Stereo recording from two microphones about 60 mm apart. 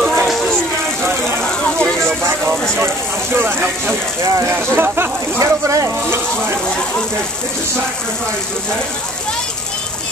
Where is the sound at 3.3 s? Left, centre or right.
Right.